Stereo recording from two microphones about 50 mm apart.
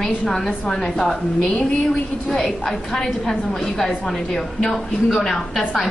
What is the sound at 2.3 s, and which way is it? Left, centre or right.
A woman's voice, centre.